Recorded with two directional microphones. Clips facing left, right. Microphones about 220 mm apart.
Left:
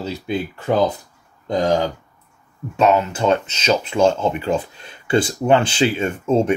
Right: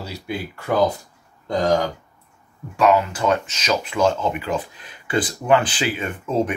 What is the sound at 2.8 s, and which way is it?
Speech, 25° left (ahead or behind).